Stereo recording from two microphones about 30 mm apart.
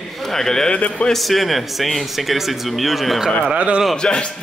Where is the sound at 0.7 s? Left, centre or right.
Left.